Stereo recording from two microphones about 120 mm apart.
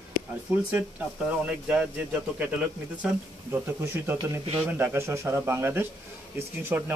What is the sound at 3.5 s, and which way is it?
Speech, 20° right (ahead or behind).